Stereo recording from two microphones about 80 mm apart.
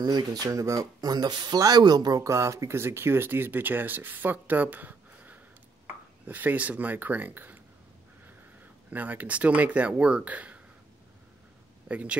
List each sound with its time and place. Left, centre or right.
0.0 s speech: right
2.2 s speech: right
8.9 s speech: right
11.9 s speech: centre